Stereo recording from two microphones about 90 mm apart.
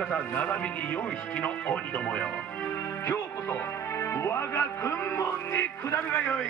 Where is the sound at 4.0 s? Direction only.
30° left (ahead or behind).